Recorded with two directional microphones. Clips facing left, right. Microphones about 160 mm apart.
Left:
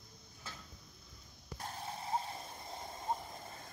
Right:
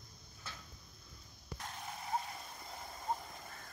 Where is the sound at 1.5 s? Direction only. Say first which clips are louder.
Left 2 dB; 35° left (ahead or behind).